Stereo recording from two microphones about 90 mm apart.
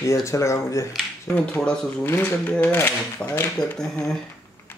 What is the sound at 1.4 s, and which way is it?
Speech, 15° left (ahead or behind).